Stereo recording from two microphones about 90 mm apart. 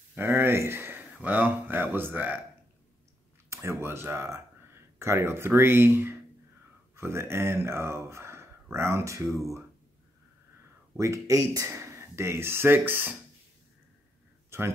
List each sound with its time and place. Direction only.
0.1 s speech: 25° right (ahead or behind)
3.4 s speech: 30° right (ahead or behind)
11.0 s speech: 35° right (ahead or behind)
14.5 s speech: 30° right (ahead or behind)